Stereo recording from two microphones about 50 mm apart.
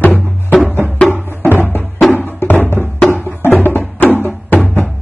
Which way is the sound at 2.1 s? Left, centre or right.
Left.